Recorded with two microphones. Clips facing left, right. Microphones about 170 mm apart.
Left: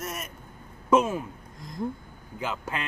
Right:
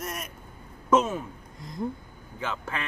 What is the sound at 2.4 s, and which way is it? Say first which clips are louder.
Speech: left 1 dB; 15° left (ahead or behind).